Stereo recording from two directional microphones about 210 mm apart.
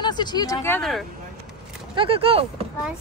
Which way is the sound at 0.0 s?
20° left (ahead or behind).